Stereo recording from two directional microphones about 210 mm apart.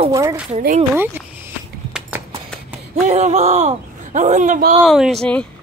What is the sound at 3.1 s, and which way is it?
A man's voice, 30° right (ahead or behind).